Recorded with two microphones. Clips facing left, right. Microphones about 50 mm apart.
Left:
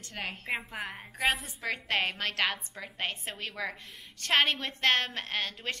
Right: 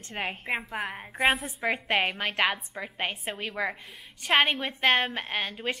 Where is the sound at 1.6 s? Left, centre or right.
Right.